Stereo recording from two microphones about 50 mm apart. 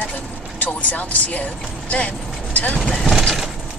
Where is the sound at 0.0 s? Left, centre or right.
Left.